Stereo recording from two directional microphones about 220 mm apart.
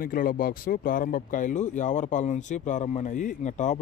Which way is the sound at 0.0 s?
40° left (ahead or behind).